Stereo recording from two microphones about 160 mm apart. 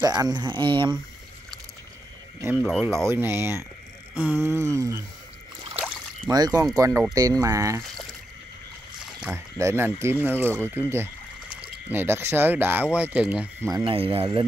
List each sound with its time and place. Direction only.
0.0 s speech: 25° right (ahead or behind)
2.5 s speech: 5° left (ahead or behind)
3.1 s speech: 15° right (ahead or behind)
6.3 s speech: 25° right (ahead or behind)
9.3 s speech: 15° right (ahead or behind)
13.8 s speech: 35° right (ahead or behind)